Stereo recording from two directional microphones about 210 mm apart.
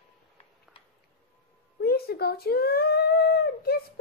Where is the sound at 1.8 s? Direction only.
45° left (ahead or behind).